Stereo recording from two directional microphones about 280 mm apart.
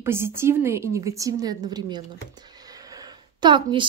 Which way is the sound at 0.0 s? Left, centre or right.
Centre.